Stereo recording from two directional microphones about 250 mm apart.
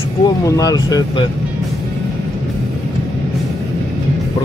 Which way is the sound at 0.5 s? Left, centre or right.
Centre.